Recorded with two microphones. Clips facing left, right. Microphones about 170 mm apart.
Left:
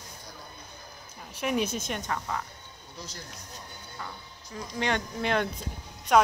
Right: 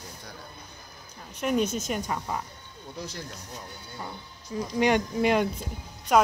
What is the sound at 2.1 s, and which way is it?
Speech, 20° right (ahead or behind).